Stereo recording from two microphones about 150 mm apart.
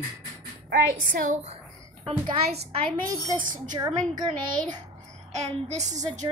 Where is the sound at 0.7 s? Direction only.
75° right (ahead or behind); by 1.6 s 55° right (ahead or behind).